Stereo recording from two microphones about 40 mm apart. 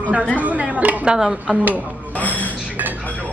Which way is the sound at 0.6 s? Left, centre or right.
Right.